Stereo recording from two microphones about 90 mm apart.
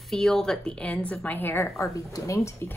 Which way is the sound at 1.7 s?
35° left (ahead or behind).